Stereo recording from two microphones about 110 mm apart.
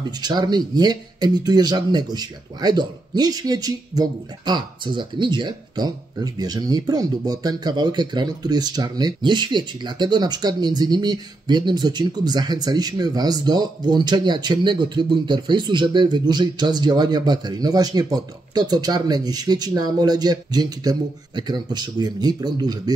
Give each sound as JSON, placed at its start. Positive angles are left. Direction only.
{"t": 0.2, "sound": "speech", "side_deg": -40}